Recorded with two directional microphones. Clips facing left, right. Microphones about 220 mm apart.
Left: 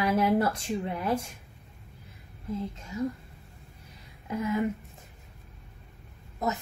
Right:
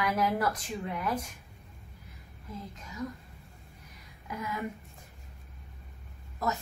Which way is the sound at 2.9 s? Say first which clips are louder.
Left 6 dB; 25° left (ahead or behind).